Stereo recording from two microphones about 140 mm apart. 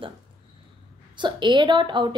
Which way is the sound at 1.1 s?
35° right (ahead or behind).